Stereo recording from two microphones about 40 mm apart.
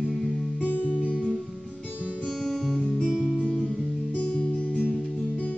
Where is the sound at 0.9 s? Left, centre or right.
Right.